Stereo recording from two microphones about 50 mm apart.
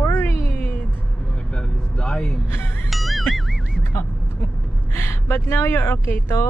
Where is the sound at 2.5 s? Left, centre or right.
Left.